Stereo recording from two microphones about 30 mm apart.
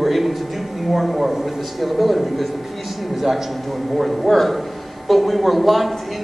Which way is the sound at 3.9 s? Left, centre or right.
Centre.